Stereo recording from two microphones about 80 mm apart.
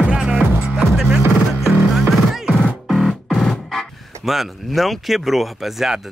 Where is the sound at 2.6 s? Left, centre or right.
Centre.